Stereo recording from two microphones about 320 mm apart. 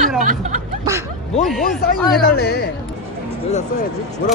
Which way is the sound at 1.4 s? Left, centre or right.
Centre.